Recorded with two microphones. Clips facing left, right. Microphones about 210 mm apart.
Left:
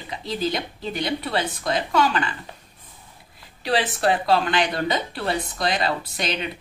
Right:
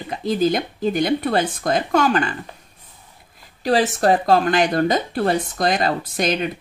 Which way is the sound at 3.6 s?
45° right (ahead or behind).